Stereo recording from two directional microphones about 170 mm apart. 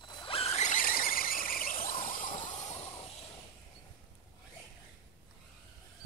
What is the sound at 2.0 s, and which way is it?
Vehicle, 50° left (ahead or behind).